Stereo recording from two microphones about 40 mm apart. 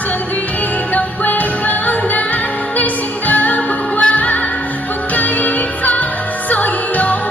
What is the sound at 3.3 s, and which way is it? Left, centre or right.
Music, left.